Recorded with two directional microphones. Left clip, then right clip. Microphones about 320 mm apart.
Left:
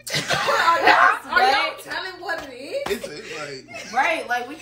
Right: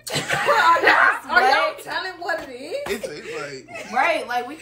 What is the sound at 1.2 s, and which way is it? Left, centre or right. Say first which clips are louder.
A woman's voice: right 1 dB; centre.